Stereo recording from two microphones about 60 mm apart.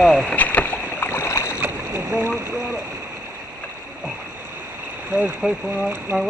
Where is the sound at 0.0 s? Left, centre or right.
Centre.